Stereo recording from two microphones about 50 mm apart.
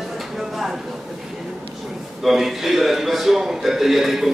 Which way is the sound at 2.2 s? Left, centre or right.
Centre.